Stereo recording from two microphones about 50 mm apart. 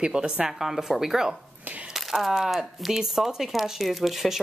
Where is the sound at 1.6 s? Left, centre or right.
Right.